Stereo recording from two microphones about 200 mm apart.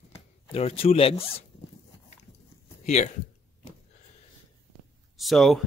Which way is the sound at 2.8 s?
35° left (ahead or behind).